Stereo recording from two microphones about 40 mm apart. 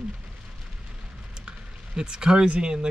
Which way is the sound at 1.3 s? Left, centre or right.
Centre.